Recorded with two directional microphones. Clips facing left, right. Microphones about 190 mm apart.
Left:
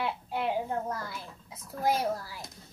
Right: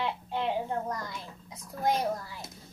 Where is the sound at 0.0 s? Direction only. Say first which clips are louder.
Even; 10° left (ahead or behind).